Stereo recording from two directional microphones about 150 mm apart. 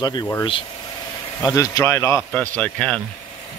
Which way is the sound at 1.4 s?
25° left (ahead or behind).